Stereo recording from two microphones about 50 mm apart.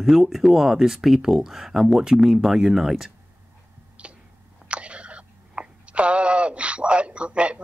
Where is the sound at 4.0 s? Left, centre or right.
Right.